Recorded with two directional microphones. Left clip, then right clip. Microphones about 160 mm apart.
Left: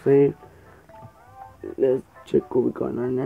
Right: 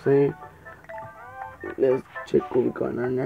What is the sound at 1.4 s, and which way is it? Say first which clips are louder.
Music: right 2 dB; 25° right (ahead or behind).